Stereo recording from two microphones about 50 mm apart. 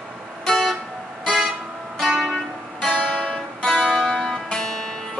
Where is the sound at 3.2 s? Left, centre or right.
Centre.